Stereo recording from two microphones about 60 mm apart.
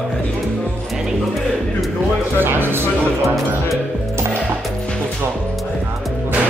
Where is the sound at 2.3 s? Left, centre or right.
Right.